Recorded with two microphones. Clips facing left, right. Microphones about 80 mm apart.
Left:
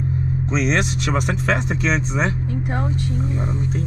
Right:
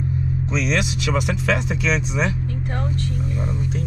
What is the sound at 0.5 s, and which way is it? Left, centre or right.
Speech, left.